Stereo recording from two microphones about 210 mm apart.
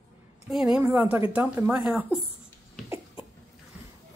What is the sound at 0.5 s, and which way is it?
A woman's voice, centre (ahead or behind).